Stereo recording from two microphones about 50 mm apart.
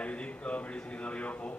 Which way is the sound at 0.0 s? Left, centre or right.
Left.